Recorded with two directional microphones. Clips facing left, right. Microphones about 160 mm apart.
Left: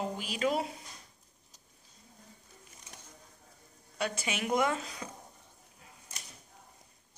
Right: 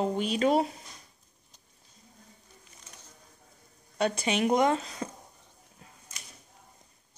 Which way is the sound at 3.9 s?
30° right (ahead or behind).